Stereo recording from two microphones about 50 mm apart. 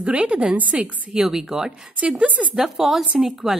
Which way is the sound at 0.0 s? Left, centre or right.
Centre.